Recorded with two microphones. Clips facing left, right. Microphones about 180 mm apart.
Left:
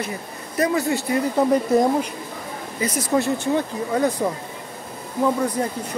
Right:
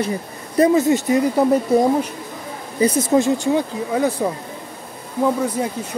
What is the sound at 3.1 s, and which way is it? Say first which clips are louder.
Speech: right 3 dB; 20° right (ahead or behind).